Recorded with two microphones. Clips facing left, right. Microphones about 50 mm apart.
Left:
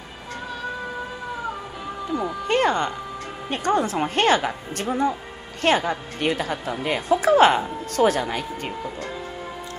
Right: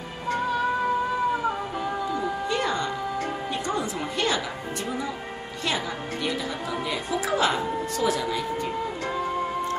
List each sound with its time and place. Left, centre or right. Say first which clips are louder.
2.4 s music: left 9 dB; left
3.6 s a woman's voice: left 11 dB; left